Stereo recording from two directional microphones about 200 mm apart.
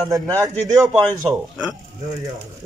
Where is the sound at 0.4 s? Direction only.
15° right (ahead or behind).